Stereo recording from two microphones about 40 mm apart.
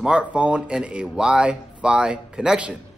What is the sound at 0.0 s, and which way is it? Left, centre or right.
Speech, right.